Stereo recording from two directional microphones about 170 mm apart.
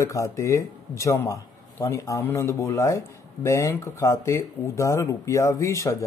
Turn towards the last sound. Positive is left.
turn(degrees=20)  # may be behind; listen again after turning